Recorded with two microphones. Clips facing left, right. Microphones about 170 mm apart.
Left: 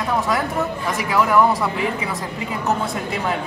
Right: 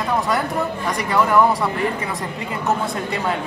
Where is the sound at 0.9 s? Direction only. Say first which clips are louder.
Even; 5° left (ahead or behind).